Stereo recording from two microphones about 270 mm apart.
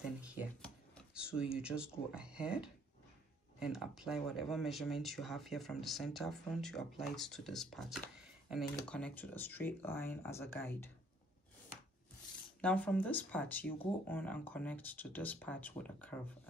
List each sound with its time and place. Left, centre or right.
0.2 s a sound: centre
3.5 s speech: centre
12.6 s speech: centre